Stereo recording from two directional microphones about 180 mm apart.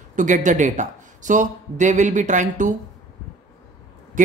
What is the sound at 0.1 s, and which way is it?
A man's voice, 45° right (ahead or behind).